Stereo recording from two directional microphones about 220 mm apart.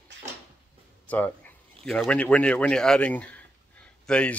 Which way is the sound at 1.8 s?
5° left (ahead or behind).